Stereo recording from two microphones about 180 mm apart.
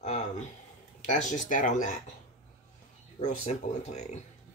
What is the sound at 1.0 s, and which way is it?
Speech, 40° left (ahead or behind).